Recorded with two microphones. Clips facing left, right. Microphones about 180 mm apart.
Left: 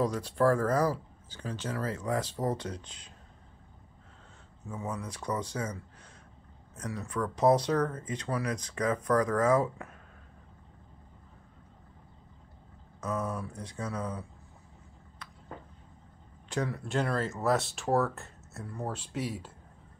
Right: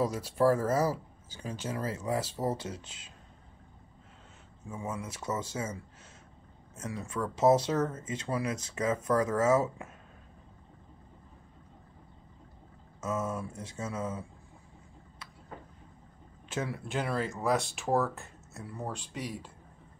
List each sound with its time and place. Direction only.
0.0 s speech: 10° right (ahead or behind)
4.8 s speech: 25° right (ahead or behind)
6.8 s speech: 20° right (ahead or behind)
7.3 s speech: 25° right (ahead or behind)
13.0 s speech: 25° right (ahead or behind)
16.6 s speech: 5° right (ahead or behind)